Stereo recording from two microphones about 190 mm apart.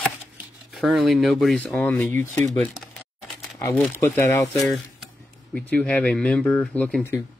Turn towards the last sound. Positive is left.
turn(degrees=5)  # may be behind; listen again after turning